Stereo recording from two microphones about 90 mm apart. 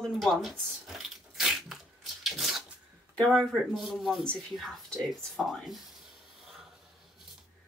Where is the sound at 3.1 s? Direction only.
5° left (ahead or behind).